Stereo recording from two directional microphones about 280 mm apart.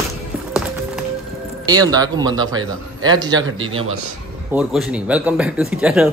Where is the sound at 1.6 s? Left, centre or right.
Centre.